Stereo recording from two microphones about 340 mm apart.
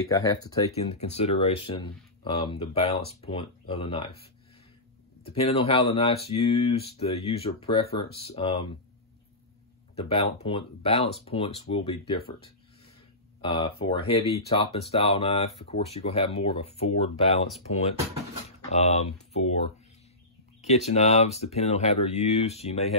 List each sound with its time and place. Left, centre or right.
0.0 s speech: centre
9.9 s speech: centre
13.4 s speech: centre
18.7 s speech: centre
20.6 s speech: centre